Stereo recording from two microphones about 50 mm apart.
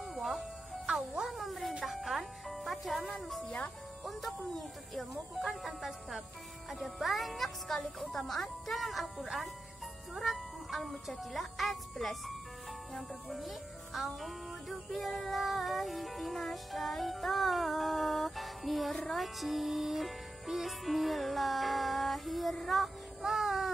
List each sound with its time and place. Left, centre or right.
0.0 s music: centre
3.4 s speech: centre
4.0 s speech: centre
4.9 s music: centre